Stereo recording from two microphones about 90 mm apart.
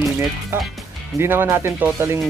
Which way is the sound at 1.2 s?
25° right (ahead or behind).